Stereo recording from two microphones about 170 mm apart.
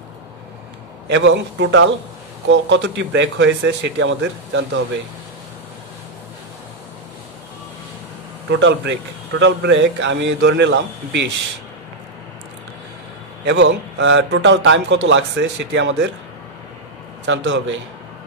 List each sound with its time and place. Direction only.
1.0 s speech: 90° right
8.5 s speech: 90° right
13.5 s speech: 90° right
17.3 s speech: 90° right